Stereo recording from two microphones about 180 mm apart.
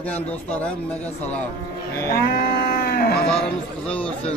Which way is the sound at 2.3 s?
65° left (ahead or behind).